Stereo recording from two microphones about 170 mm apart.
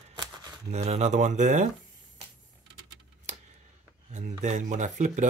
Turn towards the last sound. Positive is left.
turn(degrees=-45)  # may be behind; listen again after turning